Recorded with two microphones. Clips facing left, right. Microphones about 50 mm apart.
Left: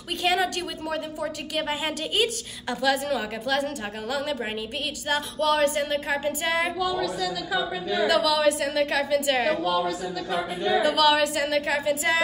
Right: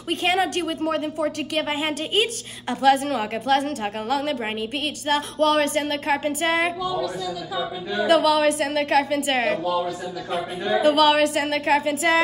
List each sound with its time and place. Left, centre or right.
0.1 s a woman's voice: right
8.1 s a woman's voice: right
10.8 s a woman's voice: right